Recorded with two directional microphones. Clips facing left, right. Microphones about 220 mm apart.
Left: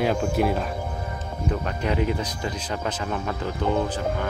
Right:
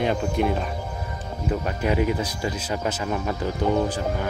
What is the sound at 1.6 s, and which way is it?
Speech, 10° right (ahead or behind).